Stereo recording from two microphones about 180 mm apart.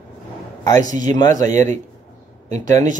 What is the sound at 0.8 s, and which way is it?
Speech, 45° right (ahead or behind).